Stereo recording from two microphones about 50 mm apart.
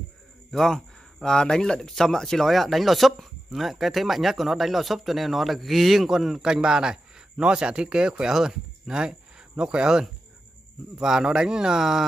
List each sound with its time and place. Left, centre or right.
0.5 s speech: centre